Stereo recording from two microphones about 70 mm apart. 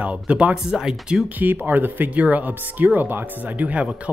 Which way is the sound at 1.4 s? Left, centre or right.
Right.